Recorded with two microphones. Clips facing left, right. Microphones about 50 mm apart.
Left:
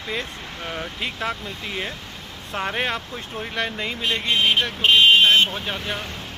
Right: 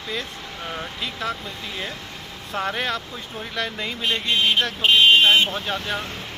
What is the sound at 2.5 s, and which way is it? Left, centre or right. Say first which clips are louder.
Speech: even; left.